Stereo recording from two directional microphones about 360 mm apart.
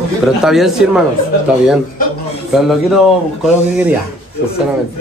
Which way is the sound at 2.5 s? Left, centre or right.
Centre.